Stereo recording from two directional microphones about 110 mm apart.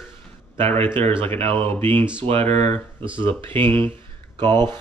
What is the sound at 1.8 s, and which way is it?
Speech, 20° left (ahead or behind).